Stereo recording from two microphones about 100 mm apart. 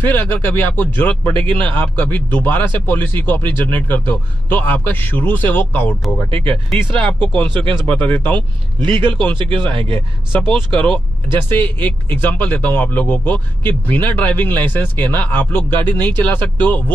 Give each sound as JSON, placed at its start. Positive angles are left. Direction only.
{"t": 0.0, "sound": "a man's voice", "side_deg": 20}
{"t": 1.3, "sound": "speech", "side_deg": -60}
{"t": 1.8, "sound": "a man's voice", "side_deg": 20}
{"t": 6.5, "sound": "speech", "side_deg": 10}
{"t": 8.4, "sound": "speech", "side_deg": -50}
{"t": 11.3, "sound": "speech", "side_deg": 20}